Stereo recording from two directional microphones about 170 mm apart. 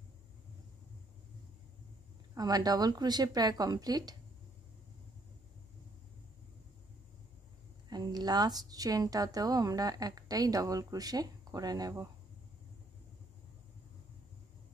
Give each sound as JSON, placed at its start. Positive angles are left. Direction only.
{"t": 2.3, "sound": "a woman's voice", "side_deg": -20}
{"t": 7.9, "sound": "a woman's voice", "side_deg": -25}